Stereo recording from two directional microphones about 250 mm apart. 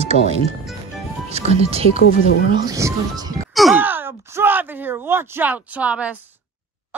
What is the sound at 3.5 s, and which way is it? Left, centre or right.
Speech, centre.